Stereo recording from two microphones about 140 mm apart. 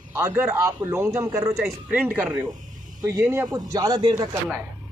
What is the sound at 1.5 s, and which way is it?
A man's voice, 10° right (ahead or behind).